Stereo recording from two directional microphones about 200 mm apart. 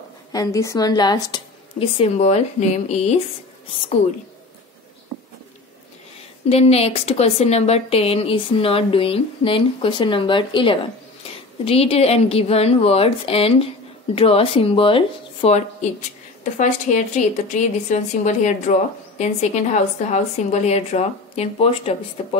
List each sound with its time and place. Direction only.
0.3 s speech: 15° left (ahead or behind); by 3.2 s 30° left (ahead or behind)
6.5 s speech: 30° left (ahead or behind)